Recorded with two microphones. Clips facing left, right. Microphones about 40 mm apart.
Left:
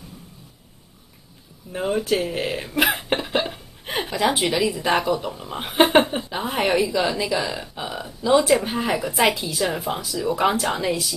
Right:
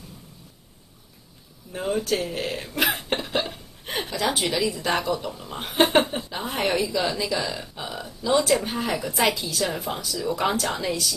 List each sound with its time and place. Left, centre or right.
1.7 s a woman's voice: centre